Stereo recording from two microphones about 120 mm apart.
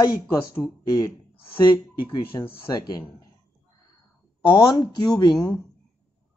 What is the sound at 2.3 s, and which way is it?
Speech, 30° left (ahead or behind).